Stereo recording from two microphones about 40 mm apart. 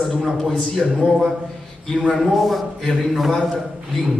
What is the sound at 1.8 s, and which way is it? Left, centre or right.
Speech, centre.